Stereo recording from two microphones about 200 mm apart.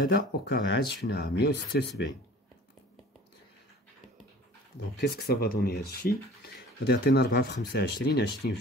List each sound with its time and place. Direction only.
0.0 s speech: 55° left (ahead or behind)
5.0 s speech: 55° left (ahead or behind)